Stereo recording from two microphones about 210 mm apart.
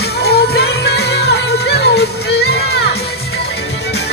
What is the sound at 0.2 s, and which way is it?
Music, 50° left (ahead or behind).